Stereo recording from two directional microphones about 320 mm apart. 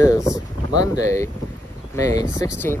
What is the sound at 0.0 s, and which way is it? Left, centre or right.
Boat, centre.